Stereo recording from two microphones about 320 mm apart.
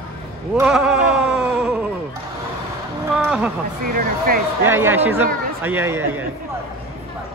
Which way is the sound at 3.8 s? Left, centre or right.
Right.